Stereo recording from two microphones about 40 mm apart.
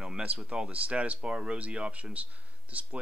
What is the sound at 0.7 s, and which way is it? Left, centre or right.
Speech, right.